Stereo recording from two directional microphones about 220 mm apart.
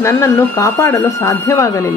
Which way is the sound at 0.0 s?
15° left (ahead or behind).